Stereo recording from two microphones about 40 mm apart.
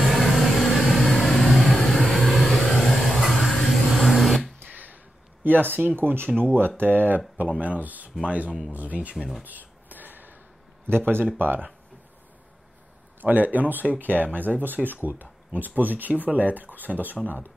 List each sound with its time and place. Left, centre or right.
0.0 s vehicle: centre
5.4 s speech: right
6.8 s speech: right
7.4 s speech: right
9.4 s a sound: right
10.9 s speech: right
13.2 s speech: right